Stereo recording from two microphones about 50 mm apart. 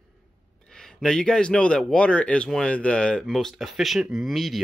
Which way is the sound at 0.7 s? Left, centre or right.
Centre.